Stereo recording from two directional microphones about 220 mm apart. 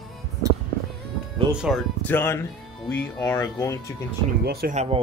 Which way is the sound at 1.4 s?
5° right (ahead or behind).